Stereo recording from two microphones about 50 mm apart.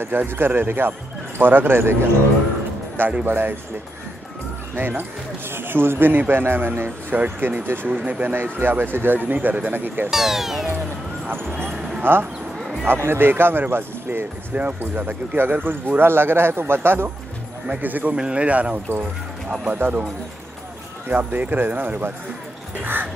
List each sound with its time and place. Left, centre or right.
0.0 s speech: right
3.3 s speech: right
4.7 s speech: right
10.1 s speech: centre
11.2 s speech: right
13.0 s speech: right
13.3 s speech: right
14.5 s speech: right
17.6 s speech: right
18.1 s speech: right
21.1 s speech: right